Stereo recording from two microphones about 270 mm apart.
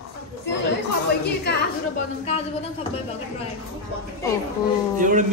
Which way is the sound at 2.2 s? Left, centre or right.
Left.